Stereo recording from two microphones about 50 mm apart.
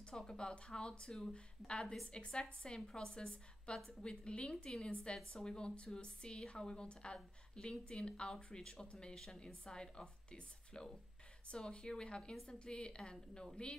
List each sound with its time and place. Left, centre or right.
0.1 s a woman's voice: centre